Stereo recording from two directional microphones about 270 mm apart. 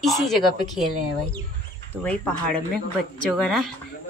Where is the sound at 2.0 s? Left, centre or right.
Centre.